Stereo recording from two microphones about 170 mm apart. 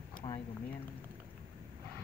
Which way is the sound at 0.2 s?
30° left (ahead or behind).